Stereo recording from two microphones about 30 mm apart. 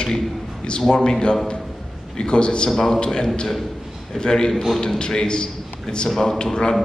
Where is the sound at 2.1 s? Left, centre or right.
Left.